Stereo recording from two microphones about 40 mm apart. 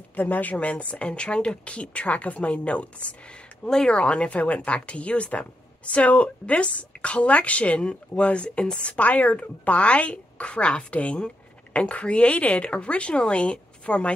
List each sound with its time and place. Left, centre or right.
0.1 s speech: left